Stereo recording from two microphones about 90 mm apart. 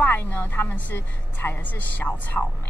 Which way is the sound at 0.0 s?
25° left (ahead or behind).